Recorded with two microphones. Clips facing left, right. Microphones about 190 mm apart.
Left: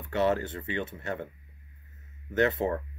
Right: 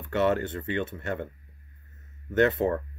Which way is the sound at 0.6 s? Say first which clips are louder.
Right 3 dB; 50° right (ahead or behind).